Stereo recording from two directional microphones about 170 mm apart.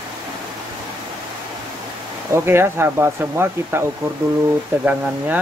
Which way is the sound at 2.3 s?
15° right (ahead or behind).